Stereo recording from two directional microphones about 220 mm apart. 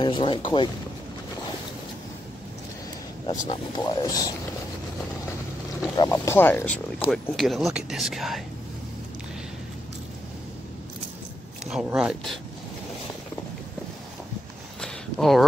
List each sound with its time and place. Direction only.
0.0 s speech: 20° left (ahead or behind)
3.3 s speech: 20° left (ahead or behind)
5.8 s speech: 15° left (ahead or behind)
11.6 s speech: 5° right (ahead or behind)
14.8 s a sound: centre (ahead or behind)